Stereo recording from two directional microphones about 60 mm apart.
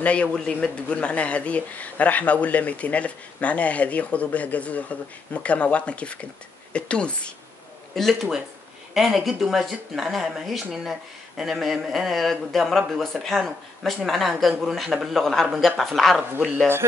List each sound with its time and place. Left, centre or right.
0.0 s speech: left
7.9 s speech: centre